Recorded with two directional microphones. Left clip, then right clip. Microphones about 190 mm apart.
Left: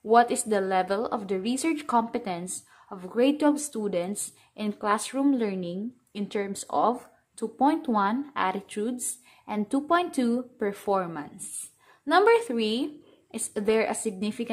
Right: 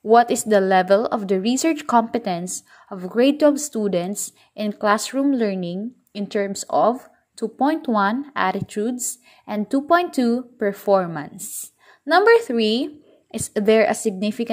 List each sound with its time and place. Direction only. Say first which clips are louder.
0.1 s speech: right 6 dB; 25° right (ahead or behind)